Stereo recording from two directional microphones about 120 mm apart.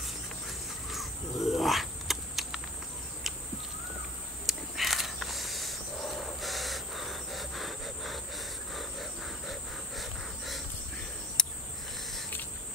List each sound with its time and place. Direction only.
0.8 s wild animals: centre (ahead or behind)
4.5 s mechanisms: centre (ahead or behind)
11.4 s cricket: 5° left (ahead or behind)